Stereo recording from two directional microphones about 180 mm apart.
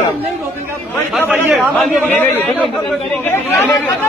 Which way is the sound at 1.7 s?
10° left (ahead or behind).